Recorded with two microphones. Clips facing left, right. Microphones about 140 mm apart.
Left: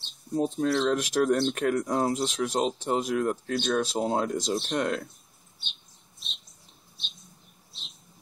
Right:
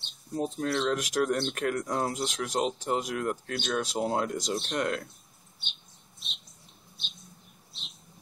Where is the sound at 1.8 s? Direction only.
25° left (ahead or behind).